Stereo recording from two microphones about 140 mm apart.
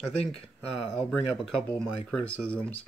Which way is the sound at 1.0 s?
5° left (ahead or behind).